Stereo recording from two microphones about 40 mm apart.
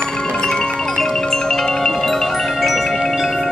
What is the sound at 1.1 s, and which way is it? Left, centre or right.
Marimba, centre.